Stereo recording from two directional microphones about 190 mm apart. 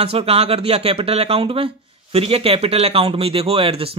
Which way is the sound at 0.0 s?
30° right (ahead or behind).